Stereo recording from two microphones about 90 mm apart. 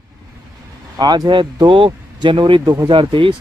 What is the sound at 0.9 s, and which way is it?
Speech, 50° right (ahead or behind).